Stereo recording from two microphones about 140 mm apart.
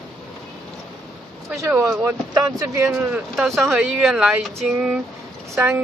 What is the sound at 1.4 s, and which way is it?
Speech, 20° right (ahead or behind).